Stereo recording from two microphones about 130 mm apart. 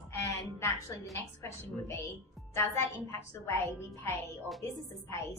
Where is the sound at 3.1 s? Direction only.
20° left (ahead or behind).